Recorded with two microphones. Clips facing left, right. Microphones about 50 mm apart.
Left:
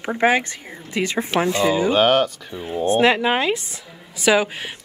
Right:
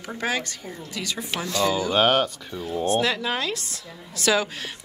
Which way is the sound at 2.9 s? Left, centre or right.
Left.